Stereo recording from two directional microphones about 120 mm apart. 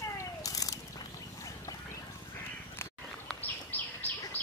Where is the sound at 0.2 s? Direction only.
30° left (ahead or behind).